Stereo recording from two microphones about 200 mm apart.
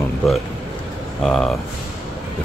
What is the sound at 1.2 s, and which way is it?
Speech, centre (ahead or behind).